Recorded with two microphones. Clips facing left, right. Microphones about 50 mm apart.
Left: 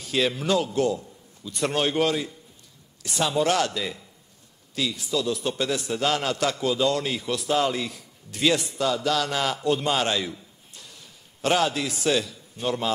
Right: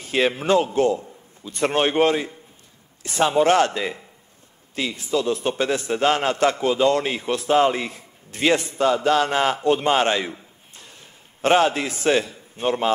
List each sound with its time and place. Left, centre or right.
0.0 s a man's voice: right